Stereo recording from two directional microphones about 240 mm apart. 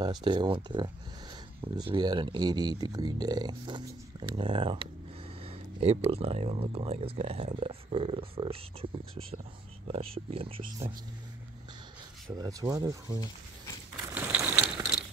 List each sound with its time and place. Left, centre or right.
0.0 s speech: centre
12.4 s speech: centre
14.0 s ratchet: centre